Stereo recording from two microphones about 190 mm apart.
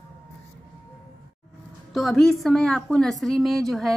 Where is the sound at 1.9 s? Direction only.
Centre (ahead or behind).